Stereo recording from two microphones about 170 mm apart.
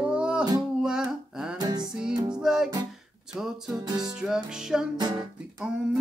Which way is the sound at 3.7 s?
25° right (ahead or behind).